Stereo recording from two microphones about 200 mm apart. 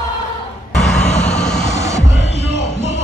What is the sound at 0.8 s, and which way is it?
Vehicle, centre (ahead or behind).